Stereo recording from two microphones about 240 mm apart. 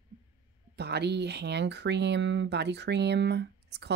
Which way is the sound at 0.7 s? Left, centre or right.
Right.